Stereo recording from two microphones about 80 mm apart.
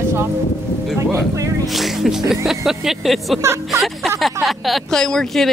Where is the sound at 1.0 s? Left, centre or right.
Right.